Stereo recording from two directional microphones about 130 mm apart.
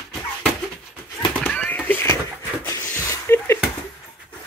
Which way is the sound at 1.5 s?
15° left (ahead or behind).